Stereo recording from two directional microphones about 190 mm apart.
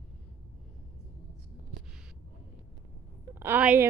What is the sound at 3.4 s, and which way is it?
Speech, 10° right (ahead or behind).